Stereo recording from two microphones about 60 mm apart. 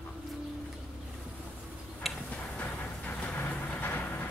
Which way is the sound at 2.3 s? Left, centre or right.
Left.